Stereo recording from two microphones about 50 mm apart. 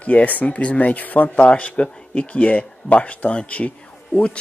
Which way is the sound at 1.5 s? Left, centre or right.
Left.